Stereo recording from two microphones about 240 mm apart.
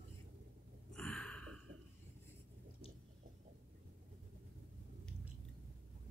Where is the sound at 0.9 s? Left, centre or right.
Centre.